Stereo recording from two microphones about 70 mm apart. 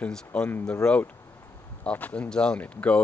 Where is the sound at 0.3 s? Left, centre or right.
Centre.